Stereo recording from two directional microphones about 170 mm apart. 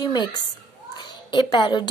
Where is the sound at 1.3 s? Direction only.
25° left (ahead or behind).